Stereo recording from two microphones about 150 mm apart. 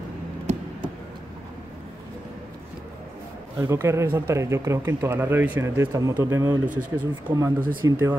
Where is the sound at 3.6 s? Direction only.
20° right (ahead or behind).